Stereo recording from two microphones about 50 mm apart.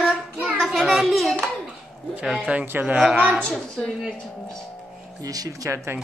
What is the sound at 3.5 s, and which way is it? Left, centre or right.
Speech, centre.